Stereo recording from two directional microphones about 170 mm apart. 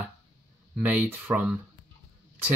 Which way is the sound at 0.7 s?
10° right (ahead or behind).